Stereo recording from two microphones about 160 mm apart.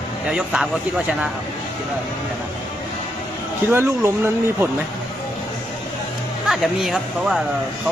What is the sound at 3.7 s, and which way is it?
Speech, 15° right (ahead or behind).